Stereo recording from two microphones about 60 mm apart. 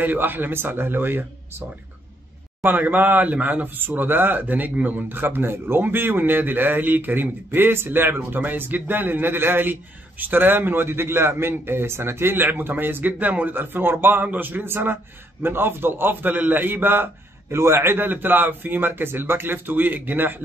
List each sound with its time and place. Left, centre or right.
0.0 s speech: right
2.6 s speech: right
17.6 s speech: right